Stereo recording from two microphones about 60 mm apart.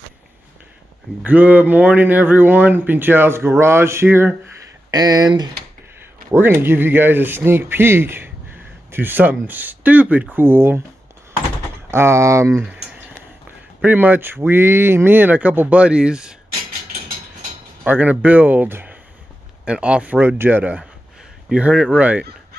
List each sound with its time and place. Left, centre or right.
1.2 s speech: right
4.9 s speech: right
6.3 s speech: right
10.3 s speech: right
11.9 s speech: right
13.8 s speech: right; by 16.3 s centre
17.8 s speech: right
18.7 s a sound: right
19.6 s speech: centre
20.2 s speech: right
21.5 s speech: centre